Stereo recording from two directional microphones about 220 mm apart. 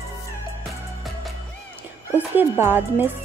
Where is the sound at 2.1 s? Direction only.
10° right (ahead or behind).